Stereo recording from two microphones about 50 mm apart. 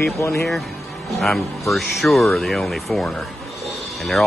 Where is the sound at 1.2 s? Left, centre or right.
Centre.